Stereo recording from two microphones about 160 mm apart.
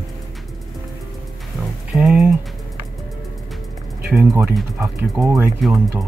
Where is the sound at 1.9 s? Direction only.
5° right (ahead or behind).